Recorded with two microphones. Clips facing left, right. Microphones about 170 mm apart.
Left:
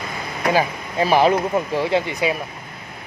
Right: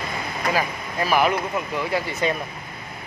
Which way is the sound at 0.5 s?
30° left (ahead or behind).